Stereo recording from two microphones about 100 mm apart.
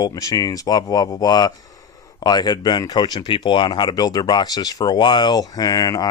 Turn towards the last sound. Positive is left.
turn(degrees=35)  # may be behind; listen again after turning